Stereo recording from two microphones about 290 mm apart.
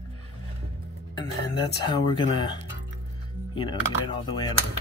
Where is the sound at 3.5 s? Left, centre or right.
Centre.